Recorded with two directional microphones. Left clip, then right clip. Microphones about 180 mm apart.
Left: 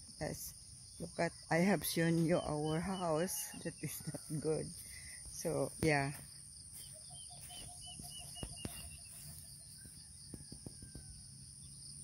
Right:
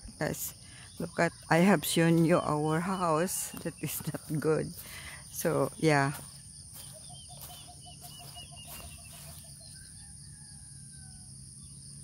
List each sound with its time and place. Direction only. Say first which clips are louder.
1.1 s speech: right 9 dB; 15° right (ahead or behind)
4.4 s speech: right 9 dB; 25° right (ahead or behind)